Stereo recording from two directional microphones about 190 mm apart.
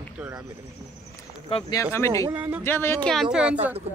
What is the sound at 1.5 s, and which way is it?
Speech, 20° left (ahead or behind).